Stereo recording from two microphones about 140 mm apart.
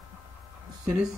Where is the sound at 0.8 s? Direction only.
5° right (ahead or behind).